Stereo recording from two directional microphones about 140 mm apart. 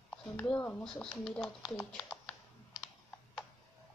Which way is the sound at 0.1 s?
10° left (ahead or behind).